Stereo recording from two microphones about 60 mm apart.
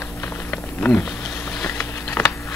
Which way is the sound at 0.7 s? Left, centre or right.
Left.